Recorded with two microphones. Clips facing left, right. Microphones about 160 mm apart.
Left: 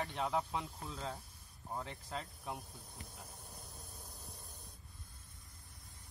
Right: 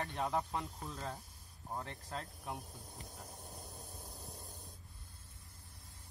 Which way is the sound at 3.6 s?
15° right (ahead or behind).